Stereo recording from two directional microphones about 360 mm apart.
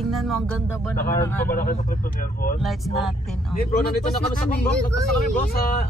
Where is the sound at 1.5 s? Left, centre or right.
Left.